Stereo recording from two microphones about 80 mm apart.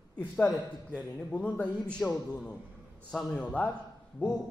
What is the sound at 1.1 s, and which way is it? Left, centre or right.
Speech, centre.